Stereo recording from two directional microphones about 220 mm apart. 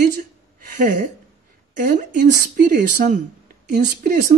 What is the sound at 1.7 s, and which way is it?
A woman's voice, 35° right (ahead or behind).